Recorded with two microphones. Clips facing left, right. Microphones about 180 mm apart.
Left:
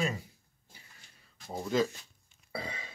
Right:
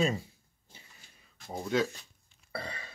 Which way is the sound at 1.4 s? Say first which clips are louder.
Even; centre (ahead or behind).